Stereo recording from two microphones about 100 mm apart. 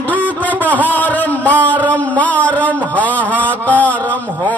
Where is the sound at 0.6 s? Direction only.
15° left (ahead or behind).